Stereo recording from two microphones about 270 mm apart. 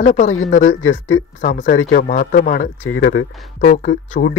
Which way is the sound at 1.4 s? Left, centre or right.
Left.